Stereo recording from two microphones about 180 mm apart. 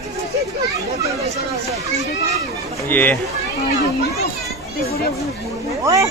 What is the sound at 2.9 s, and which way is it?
Speech, 10° left (ahead or behind).